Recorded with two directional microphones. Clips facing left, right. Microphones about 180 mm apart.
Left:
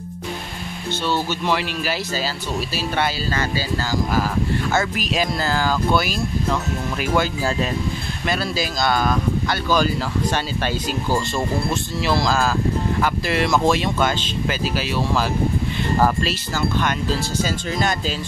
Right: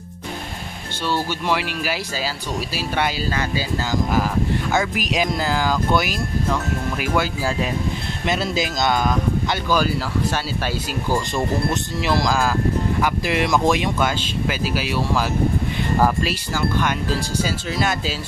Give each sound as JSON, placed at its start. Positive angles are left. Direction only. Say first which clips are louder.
{"t": 1.0, "sound": "speech", "louder": "even", "side_deg": -10}
{"t": 8.3, "sound": "speech", "louder": "right 1 dB", "side_deg": -20}
{"t": 10.3, "sound": "speech", "louder": "left 1 dB", "side_deg": -5}